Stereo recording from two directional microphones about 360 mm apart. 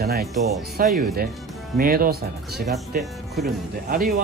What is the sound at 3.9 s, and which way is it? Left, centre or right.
Speech, right.